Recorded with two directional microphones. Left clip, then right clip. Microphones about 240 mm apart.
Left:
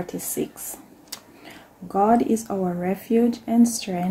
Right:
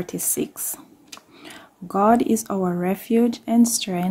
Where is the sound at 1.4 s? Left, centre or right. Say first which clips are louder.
Right 2 dB; right.